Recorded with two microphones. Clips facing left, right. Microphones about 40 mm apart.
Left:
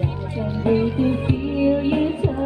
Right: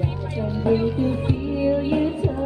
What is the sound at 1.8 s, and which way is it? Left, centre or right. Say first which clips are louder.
Music: left 1 dB; left.